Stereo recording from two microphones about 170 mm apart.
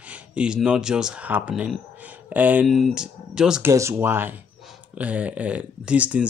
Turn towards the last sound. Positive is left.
turn(degrees=-10)  # may be behind; listen again after turning